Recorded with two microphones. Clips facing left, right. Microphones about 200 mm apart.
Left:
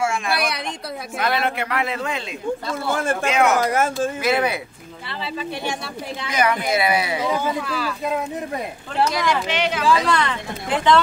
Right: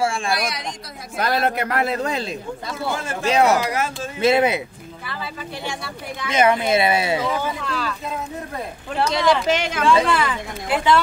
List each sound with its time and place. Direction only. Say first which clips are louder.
0.0 s speech: right 1 dB; 30° right (ahead or behind)
1.1 s speech: right 2 dB; 40° right (ahead or behind)
3.0 s speech: left 6 dB; 55° left (ahead or behind)
3.3 s speech: right 3 dB; 35° right (ahead or behind)
3.5 s speech: left 3 dB; 50° left (ahead or behind)
4.2 s speech: right 6 dB; 25° right (ahead or behind)
6.3 s speech: right 3 dB; 25° right (ahead or behind)
7.2 s speech: left 1 dB; 10° left (ahead or behind)
9.5 s speech: right 2 dB; 45° right (ahead or behind)
10.0 s speech: even; 5° right (ahead or behind)